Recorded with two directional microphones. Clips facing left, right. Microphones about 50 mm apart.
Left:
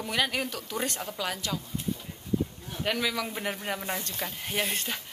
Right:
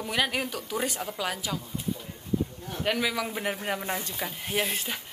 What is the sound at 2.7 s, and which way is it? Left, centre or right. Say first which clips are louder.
Speech: right 2 dB; centre.